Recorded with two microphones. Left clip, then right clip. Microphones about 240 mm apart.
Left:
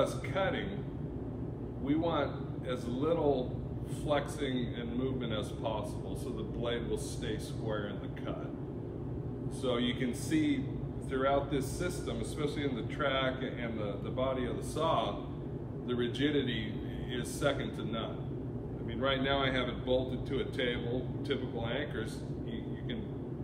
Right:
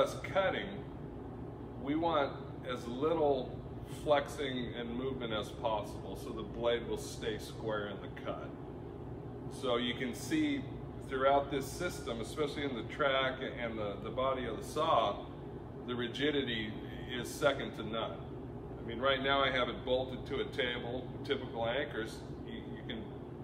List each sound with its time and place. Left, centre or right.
0.0 s a man's voice: centre
1.9 s a man's voice: centre
9.6 s a man's voice: centre